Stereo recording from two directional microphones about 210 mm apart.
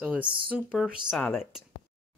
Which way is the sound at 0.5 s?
5° right (ahead or behind).